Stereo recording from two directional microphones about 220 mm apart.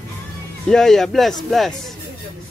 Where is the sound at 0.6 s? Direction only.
Centre (ahead or behind).